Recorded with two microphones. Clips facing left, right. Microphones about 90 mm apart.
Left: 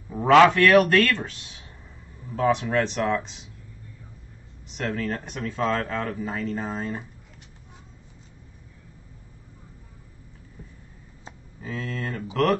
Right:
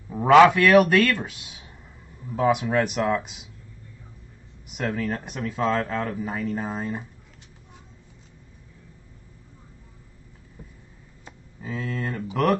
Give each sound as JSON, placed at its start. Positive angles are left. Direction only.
{"t": 0.1, "sound": "a man's voice", "side_deg": -5}
{"t": 4.6, "sound": "speech", "side_deg": -10}
{"t": 11.6, "sound": "speech", "side_deg": -10}